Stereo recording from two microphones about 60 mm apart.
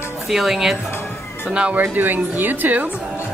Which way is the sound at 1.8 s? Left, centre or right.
Right.